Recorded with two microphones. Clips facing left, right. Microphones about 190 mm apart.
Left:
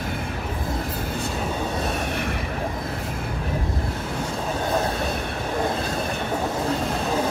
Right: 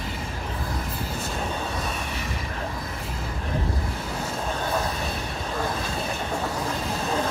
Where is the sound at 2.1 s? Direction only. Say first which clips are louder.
Left 6 dB; 60° left (ahead or behind).